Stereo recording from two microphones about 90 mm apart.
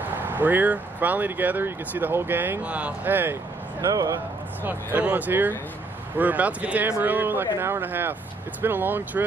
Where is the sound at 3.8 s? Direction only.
40° right (ahead or behind).